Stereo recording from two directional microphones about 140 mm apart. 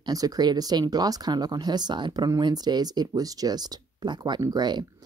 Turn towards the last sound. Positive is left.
turn(degrees=-30)  # may be behind; listen again after turning